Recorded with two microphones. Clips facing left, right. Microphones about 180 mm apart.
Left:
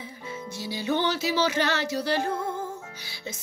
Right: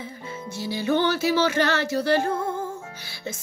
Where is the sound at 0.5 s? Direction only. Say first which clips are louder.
Right 4 dB; 50° right (ahead or behind).